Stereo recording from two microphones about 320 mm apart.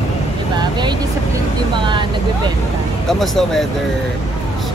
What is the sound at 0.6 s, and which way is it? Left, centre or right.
Vehicle, centre.